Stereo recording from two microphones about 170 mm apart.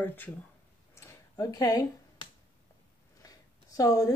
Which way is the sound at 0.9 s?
20° left (ahead or behind).